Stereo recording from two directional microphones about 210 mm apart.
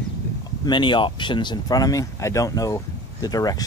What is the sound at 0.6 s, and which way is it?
Speech, 20° left (ahead or behind).